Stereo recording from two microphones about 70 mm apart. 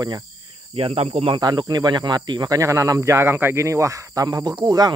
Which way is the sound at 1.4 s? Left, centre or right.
Right.